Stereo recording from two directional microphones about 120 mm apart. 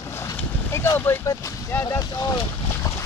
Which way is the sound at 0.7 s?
20° left (ahead or behind).